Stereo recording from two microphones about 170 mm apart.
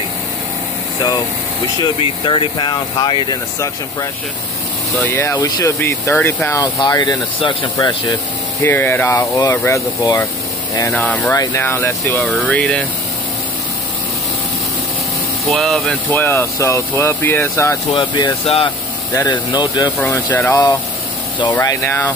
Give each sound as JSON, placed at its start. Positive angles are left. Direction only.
{"t": 1.8, "sound": "speech", "side_deg": 30}
{"t": 8.6, "sound": "speech", "side_deg": 10}
{"t": 10.9, "sound": "speech", "side_deg": 10}
{"t": 15.4, "sound": "speech", "side_deg": 0}
{"t": 20.0, "sound": "speech", "side_deg": 10}